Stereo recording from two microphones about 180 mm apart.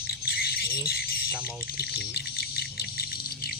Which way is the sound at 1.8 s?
60° left (ahead or behind).